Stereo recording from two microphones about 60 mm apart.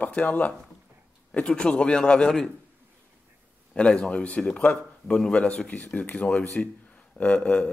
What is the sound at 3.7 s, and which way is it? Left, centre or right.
A man's voice, centre.